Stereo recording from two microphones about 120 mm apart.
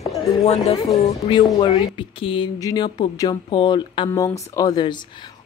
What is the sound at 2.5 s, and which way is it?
Speech, 35° left (ahead or behind).